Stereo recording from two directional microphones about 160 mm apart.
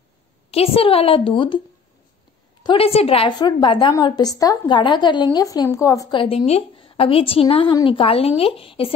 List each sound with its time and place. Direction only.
0.5 s a woman's voice: 40° left (ahead or behind)
2.6 s a woman's voice: 35° left (ahead or behind)